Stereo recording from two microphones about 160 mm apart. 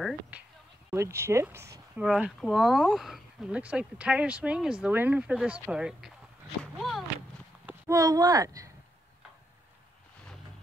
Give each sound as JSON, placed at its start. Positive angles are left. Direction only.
{"t": 0.8, "sound": "speech", "side_deg": -15}
{"t": 2.0, "sound": "speech", "side_deg": -5}
{"t": 6.6, "sound": "a sound", "side_deg": 0}
{"t": 7.9, "sound": "speech", "side_deg": -20}